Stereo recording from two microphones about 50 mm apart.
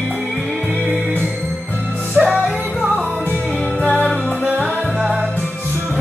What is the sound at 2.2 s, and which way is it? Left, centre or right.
Music, centre.